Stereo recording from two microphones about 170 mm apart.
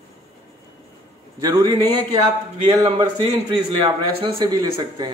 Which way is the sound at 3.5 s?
25° right (ahead or behind).